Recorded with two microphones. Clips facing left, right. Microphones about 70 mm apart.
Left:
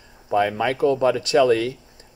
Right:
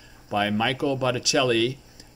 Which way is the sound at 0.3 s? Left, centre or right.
Left.